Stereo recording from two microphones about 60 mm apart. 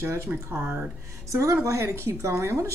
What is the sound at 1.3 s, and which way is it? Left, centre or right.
Speech, right.